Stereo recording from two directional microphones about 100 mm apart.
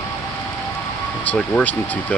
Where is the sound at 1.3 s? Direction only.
15° left (ahead or behind).